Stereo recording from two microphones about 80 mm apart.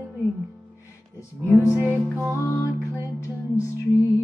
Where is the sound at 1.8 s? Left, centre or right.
Right.